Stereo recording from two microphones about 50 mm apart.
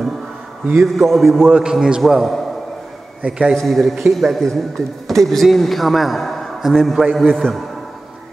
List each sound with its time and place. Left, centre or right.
0.8 s speech: centre
1.5 s a man's voice: centre
3.5 s speech: centre